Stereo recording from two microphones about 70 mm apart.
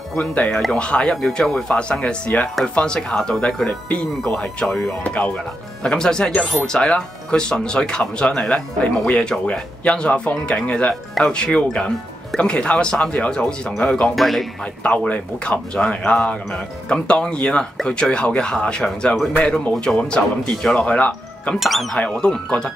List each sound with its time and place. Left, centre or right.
0.2 s speech: centre
5.0 s speech: centre
14.1 s speech: centre
14.8 s speech: centre
19.7 s speech: centre
20.0 s speech: centre
21.5 s speech: centre
21.9 s speech: centre